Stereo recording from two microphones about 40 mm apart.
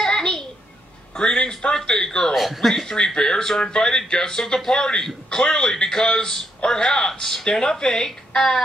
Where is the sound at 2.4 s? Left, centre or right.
Centre.